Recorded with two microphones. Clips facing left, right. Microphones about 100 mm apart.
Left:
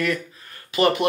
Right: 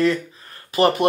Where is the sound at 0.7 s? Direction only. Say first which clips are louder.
Right 2 dB; 40° right (ahead or behind).